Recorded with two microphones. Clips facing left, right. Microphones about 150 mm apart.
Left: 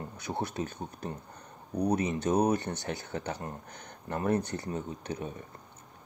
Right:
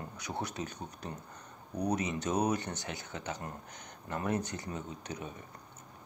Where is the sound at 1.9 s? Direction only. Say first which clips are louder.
Left 6 dB; 50° left (ahead or behind).